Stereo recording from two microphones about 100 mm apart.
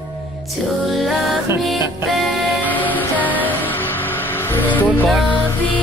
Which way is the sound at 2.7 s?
15° left (ahead or behind).